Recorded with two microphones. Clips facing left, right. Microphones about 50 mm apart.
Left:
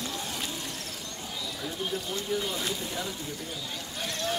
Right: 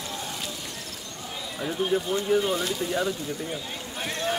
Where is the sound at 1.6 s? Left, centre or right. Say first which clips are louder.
Right 9 dB; right.